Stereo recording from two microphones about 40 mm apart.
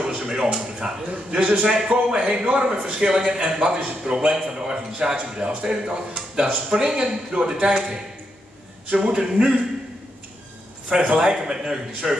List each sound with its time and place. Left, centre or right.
0.0 s a man's voice: right
10.9 s a man's voice: right
11.1 s a man's voice: centre